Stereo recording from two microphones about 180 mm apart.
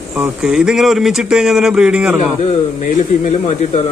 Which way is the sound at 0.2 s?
5° right (ahead or behind).